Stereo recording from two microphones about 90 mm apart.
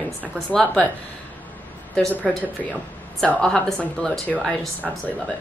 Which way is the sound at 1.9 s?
15° left (ahead or behind).